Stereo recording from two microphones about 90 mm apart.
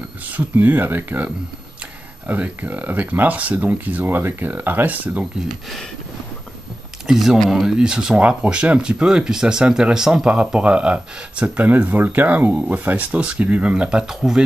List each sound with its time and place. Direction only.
0.3 s speech: 20° right (ahead or behind)
7.1 s speech: 5° right (ahead or behind)